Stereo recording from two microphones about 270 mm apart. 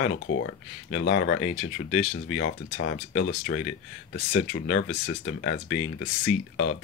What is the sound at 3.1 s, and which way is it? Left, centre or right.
Speech, left.